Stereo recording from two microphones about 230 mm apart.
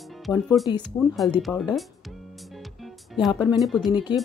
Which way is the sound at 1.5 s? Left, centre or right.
Centre.